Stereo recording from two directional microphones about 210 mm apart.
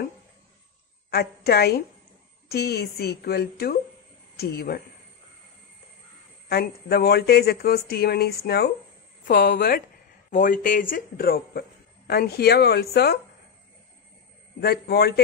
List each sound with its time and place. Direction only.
1.1 s speech: 50° left (ahead or behind)
6.5 s speech: 50° left (ahead or behind)
14.6 s speech: 50° left (ahead or behind)